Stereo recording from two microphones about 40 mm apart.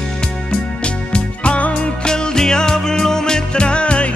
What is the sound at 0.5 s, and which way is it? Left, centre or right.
Music, left.